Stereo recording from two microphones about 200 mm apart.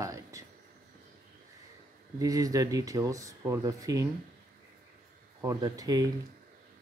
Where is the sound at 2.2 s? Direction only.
15° right (ahead or behind).